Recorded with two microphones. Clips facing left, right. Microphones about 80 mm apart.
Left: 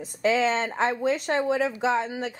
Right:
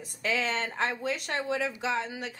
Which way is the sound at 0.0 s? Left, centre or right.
Left.